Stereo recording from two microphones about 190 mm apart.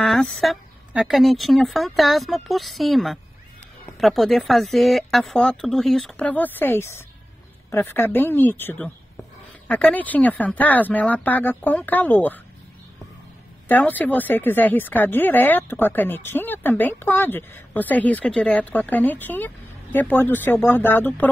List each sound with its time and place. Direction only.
0.0 s a woman's voice: 5° left (ahead or behind)
13.7 s speech: 10° left (ahead or behind)